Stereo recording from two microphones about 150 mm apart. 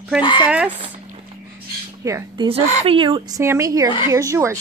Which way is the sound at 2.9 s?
35° right (ahead or behind).